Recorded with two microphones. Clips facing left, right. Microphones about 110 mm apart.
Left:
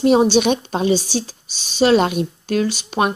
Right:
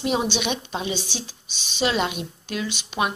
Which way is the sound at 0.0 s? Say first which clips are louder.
Left 10 dB; 40° left (ahead or behind).